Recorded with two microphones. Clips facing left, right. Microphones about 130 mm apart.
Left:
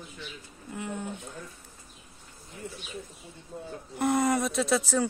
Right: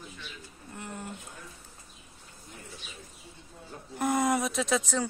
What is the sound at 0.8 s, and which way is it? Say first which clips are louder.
Speech: left 5 dB; centre (ahead or behind).